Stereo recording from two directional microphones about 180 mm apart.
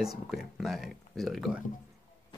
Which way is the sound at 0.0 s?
Centre (ahead or behind).